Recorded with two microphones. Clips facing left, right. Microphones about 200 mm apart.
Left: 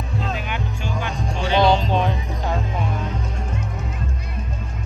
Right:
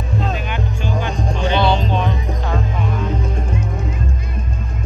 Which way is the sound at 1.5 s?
40° left (ahead or behind).